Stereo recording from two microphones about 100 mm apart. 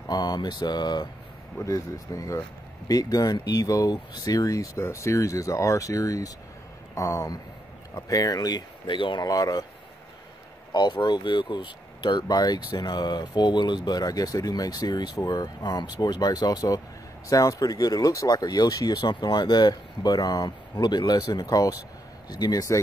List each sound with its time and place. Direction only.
0.1 s speech: 40° left (ahead or behind)
1.6 s speech: 35° left (ahead or behind); by 9.2 s 55° left (ahead or behind)
9.2 s speech: 40° left (ahead or behind)
10.7 s speech: 45° left (ahead or behind)